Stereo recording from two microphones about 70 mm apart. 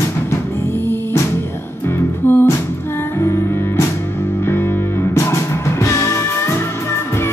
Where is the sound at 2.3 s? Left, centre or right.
Left.